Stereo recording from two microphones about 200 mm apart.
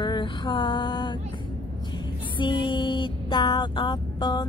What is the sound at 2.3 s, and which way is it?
Speech, 25° left (ahead or behind).